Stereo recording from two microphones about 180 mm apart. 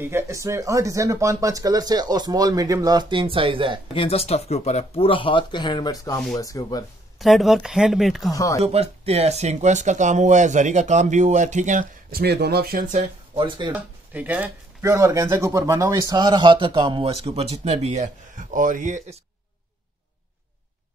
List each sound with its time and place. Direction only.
0.0 s speech: 15° right (ahead or behind)
3.9 s speech: 30° left (ahead or behind)
7.2 s speech: centre (ahead or behind)
8.3 s speech: 15° left (ahead or behind)
8.5 s speech: 35° right (ahead or behind)
13.3 s speech: 25° right (ahead or behind)
13.7 s speech: 10° right (ahead or behind); by 19.1 s 45° right (ahead or behind)